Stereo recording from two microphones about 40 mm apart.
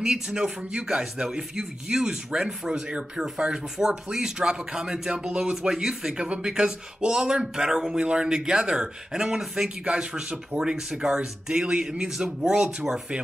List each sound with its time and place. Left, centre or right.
0.0 s speech: centre
0.4 s speech: right
5.1 s speech: right
5.4 s speech: centre